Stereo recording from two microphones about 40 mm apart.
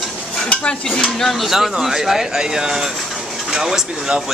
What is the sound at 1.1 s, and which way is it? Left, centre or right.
Speech, centre.